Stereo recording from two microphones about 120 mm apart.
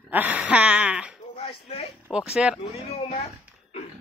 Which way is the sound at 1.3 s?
55° left (ahead or behind).